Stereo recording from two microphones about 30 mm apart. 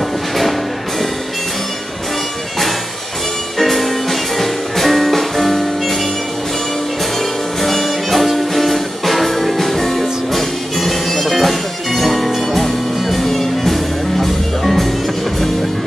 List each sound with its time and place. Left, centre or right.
3.5 s music: centre
7.6 s music: centre